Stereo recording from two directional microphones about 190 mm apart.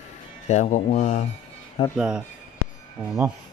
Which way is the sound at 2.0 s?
5° right (ahead or behind).